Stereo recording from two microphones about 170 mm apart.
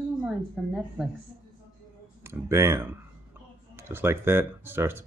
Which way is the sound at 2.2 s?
15° right (ahead or behind).